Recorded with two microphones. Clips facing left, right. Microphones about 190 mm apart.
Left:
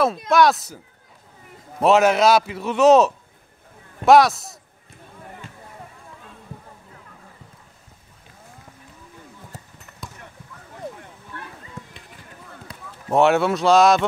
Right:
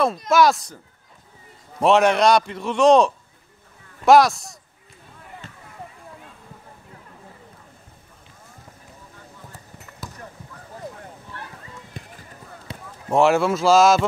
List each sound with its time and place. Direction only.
0.3 s a man's voice: centre (ahead or behind)
1.8 s a man's voice: centre (ahead or behind)
10.0 s a sound: centre (ahead or behind)
11.8 s run: 60° left (ahead or behind)
12.7 s basketball bounce: 25° right (ahead or behind)
13.1 s a man's voice: centre (ahead or behind)